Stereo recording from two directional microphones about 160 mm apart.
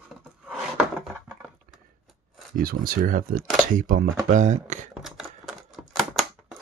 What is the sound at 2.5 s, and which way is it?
Speech, 65° right (ahead or behind).